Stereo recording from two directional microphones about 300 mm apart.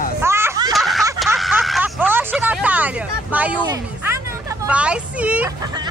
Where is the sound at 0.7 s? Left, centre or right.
Centre.